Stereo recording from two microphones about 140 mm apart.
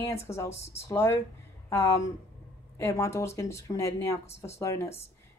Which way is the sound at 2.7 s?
20° left (ahead or behind).